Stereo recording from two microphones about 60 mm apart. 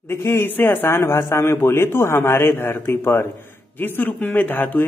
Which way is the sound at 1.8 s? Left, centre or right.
Left.